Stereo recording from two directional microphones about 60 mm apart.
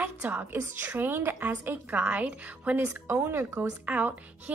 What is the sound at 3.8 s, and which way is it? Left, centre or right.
Speech, right.